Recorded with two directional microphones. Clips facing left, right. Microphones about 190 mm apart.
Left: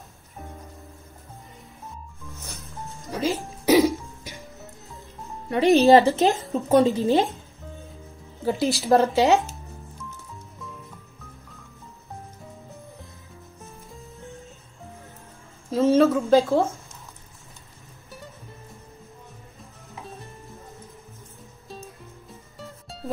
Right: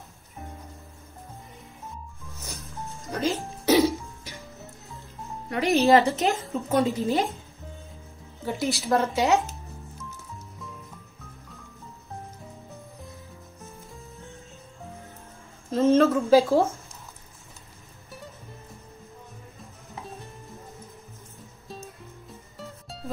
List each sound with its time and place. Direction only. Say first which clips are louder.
2.5 s music: right 2 dB; centre (ahead or behind); by 4.4 s 15° left (ahead or behind)
5.5 s a woman's voice: left 4 dB; 25° left (ahead or behind)
8.7 s speech: left 6 dB; 30° left (ahead or behind)
15.7 s speech: left 1 dB; centre (ahead or behind)